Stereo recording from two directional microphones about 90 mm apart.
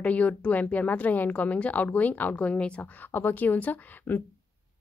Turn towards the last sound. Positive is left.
turn(degrees=20)  # may be behind; listen again after turning